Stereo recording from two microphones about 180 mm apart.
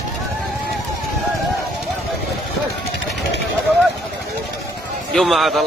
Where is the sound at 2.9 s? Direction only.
75° left (ahead or behind).